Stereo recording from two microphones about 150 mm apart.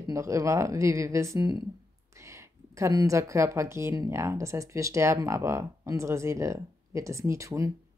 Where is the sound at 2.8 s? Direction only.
20° right (ahead or behind).